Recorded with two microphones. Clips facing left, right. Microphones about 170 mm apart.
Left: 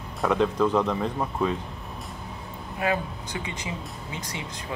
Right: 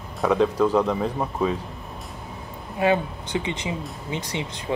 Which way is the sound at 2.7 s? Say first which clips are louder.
Right 6 dB; 25° right (ahead or behind).